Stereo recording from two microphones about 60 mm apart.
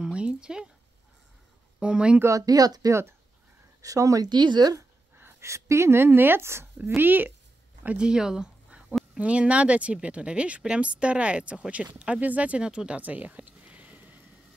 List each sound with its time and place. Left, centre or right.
0.0 s a sound: centre
1.8 s speech: centre
2.2 s speech: right
2.9 s speech: right
3.8 s speech: right
5.4 s speech: right
7.0 s speech: right
8.0 s speech: centre; by 14.2 s right